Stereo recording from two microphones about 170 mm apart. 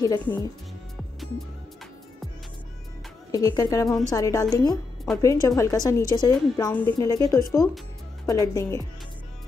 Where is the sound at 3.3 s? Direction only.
20° left (ahead or behind).